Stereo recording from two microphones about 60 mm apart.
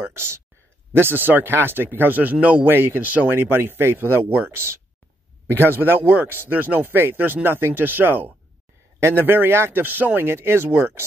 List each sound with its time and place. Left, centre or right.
0.0 s a man's voice: right
3.3 s a man's voice: right